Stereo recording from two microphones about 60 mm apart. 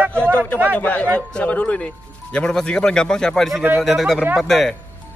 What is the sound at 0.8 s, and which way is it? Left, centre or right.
A man's voice, left.